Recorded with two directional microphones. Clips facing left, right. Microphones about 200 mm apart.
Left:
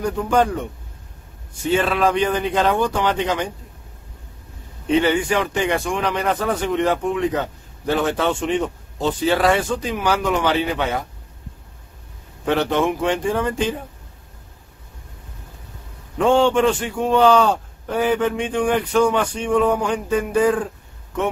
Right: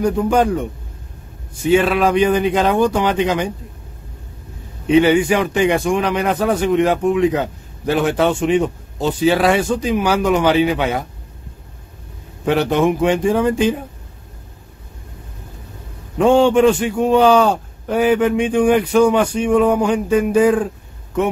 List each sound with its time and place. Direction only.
0.1 s a man's voice: 15° right (ahead or behind)
1.7 s a man's voice: 15° right (ahead or behind)
4.8 s a man's voice: 10° right (ahead or behind)
12.4 s a man's voice: 10° right (ahead or behind)
16.2 s a man's voice: 10° right (ahead or behind)